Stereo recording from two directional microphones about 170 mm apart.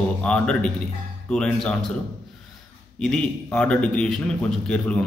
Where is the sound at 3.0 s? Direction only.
5° left (ahead or behind).